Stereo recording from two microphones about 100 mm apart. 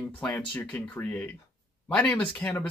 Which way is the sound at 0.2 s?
15° left (ahead or behind).